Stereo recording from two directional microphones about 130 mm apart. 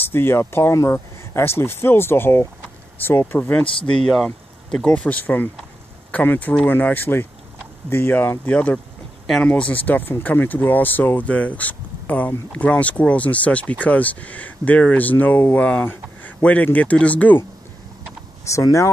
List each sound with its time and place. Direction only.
0.1 s speech: 20° left (ahead or behind)
18.4 s speech: 25° left (ahead or behind)